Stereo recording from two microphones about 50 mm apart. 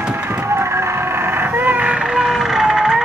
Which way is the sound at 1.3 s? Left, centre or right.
Right.